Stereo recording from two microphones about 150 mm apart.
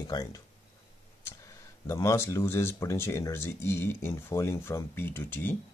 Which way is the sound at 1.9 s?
20° left (ahead or behind).